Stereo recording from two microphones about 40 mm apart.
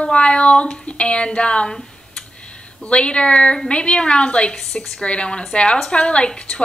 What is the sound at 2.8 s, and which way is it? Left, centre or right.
Speech, left.